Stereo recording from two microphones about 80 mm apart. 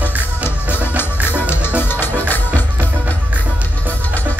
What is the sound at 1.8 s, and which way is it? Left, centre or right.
Music, left.